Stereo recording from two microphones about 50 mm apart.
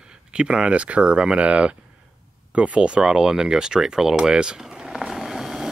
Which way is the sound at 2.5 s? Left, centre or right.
Right.